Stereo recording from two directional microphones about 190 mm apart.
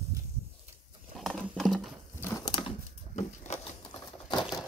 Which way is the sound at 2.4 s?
25° left (ahead or behind).